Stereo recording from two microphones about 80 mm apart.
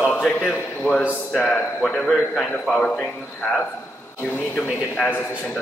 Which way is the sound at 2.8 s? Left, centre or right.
Centre.